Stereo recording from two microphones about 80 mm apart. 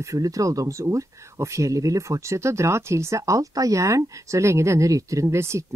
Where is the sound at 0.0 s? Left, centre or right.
Right.